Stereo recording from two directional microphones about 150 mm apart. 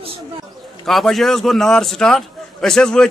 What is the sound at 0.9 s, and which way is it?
A man's voice, centre (ahead or behind).